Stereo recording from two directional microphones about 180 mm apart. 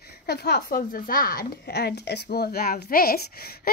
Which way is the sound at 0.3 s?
65° left (ahead or behind).